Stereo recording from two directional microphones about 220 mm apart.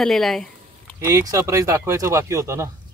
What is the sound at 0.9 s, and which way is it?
Speech, 15° right (ahead or behind).